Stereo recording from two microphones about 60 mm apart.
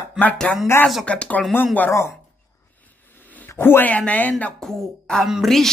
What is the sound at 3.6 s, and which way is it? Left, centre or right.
Speech, left.